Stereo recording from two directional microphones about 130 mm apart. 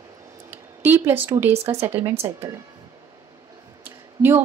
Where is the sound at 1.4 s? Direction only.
20° right (ahead or behind).